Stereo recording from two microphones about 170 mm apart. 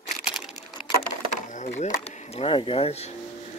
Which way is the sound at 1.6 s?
45° left (ahead or behind).